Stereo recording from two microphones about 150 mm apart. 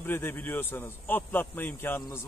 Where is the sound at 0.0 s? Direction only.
15° left (ahead or behind).